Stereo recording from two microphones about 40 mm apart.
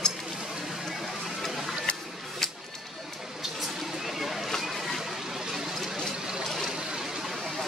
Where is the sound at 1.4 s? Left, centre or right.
Centre.